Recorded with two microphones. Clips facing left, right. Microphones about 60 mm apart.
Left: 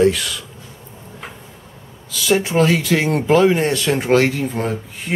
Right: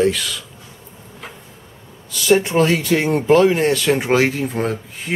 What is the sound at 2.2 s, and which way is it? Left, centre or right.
Speech, centre.